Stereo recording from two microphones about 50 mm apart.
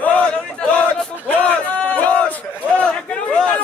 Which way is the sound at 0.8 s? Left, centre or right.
Left.